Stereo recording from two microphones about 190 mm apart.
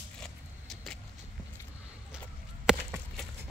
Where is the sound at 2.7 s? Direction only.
5° right (ahead or behind).